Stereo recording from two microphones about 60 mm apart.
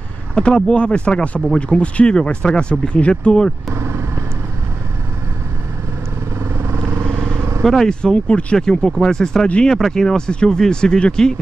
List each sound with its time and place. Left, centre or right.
0.3 s speech: centre
3.7 s vehicle: right
6.6 s vehicle: right
7.3 s vehicle: right
7.6 s speech: centre